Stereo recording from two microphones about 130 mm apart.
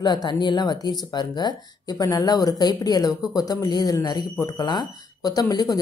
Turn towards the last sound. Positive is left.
turn(degrees=30)  # may be behind; listen again after turning